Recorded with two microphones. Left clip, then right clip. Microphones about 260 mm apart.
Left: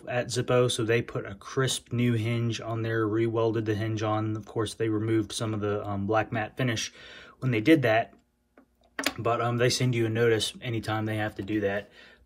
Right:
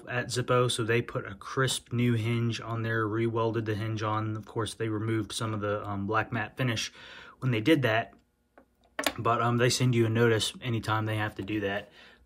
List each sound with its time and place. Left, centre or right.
0.0 s speech: centre
9.2 s speech: centre